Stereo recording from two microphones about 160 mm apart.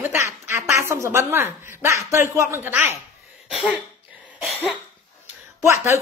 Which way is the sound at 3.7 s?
10° right (ahead or behind).